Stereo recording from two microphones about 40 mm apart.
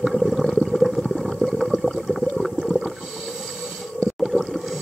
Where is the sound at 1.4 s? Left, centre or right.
Left.